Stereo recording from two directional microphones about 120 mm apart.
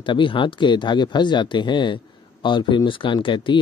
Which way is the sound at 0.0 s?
45° left (ahead or behind).